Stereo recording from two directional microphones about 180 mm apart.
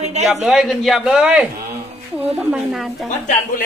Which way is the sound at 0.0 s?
40° right (ahead or behind).